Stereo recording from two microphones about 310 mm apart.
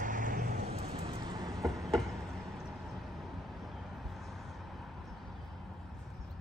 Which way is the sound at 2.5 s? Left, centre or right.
Centre.